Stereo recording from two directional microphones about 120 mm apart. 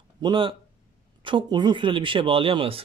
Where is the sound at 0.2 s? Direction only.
45° right (ahead or behind).